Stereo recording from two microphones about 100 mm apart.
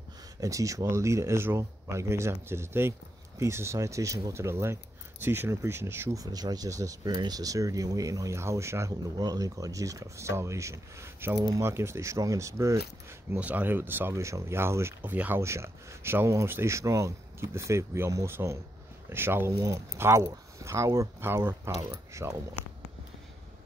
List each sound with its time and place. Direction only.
0.4 s speech: 35° right (ahead or behind)
6.1 s speech: 40° right (ahead or behind)
7.1 s speech: 45° right (ahead or behind); by 11.3 s 25° right (ahead or behind)
11.3 s speech: 40° right (ahead or behind)
11.6 s speech: 25° right (ahead or behind)
13.4 s speech: 15° right (ahead or behind)
19.5 s speech: 40° right (ahead or behind)
20.0 s speech: 30° right (ahead or behind)